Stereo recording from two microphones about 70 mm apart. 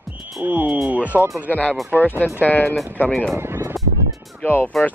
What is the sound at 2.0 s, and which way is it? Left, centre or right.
Speech, left.